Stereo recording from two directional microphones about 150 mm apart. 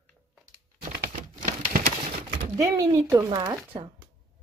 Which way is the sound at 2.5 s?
20° right (ahead or behind).